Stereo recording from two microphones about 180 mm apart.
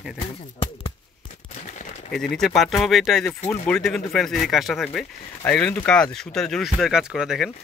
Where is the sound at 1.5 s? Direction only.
40° left (ahead or behind).